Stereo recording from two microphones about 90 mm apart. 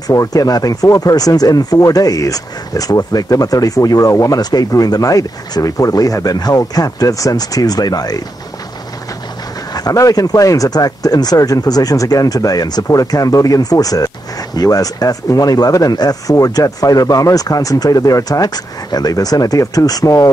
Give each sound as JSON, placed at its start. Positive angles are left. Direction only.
{"t": 0.1, "sound": "speech", "side_deg": 40}
{"t": 9.8, "sound": "speech", "side_deg": 40}